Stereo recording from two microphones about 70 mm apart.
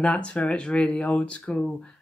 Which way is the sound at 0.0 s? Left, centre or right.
Centre.